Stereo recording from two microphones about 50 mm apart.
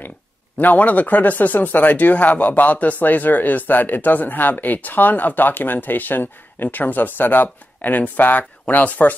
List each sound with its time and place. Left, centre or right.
0.6 s speech: left